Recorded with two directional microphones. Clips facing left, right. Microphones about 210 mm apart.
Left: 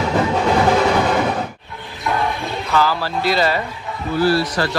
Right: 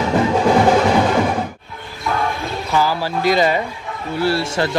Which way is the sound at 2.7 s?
15° right (ahead or behind).